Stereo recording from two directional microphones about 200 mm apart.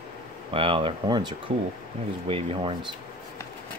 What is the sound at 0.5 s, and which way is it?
Speech, 25° right (ahead or behind).